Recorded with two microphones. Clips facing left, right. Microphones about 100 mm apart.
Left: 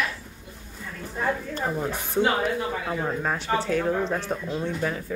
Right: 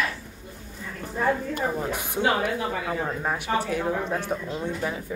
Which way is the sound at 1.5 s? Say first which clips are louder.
Right 1 dB; 15° right (ahead or behind).